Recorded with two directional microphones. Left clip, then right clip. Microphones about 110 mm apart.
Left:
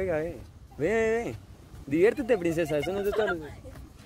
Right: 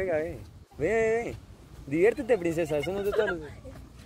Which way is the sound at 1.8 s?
70° left (ahead or behind).